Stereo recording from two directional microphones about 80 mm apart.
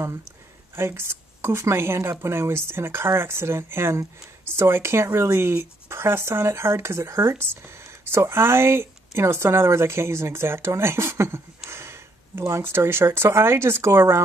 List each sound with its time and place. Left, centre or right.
0.7 s speech: right